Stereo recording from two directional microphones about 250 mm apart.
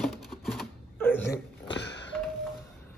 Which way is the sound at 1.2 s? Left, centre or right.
Left.